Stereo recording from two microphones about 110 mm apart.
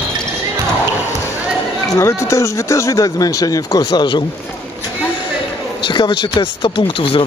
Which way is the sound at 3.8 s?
45° left (ahead or behind).